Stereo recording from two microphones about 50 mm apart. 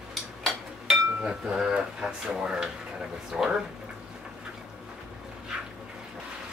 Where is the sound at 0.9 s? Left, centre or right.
Centre.